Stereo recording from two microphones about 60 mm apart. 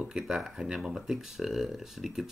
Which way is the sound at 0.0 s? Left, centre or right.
Centre.